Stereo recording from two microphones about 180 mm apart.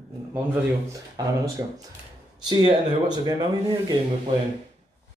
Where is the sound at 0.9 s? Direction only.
20° right (ahead or behind).